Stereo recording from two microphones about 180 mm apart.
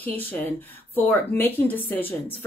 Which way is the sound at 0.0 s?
10° left (ahead or behind).